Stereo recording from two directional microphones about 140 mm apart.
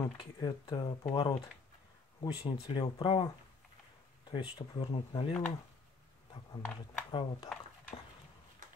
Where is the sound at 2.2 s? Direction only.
30° left (ahead or behind).